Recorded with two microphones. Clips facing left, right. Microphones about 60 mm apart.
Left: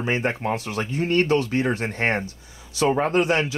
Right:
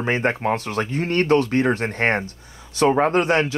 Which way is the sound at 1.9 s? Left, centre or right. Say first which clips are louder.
Right 3 dB; right.